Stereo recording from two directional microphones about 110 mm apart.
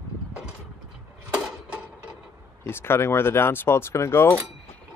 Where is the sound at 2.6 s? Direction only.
20° left (ahead or behind).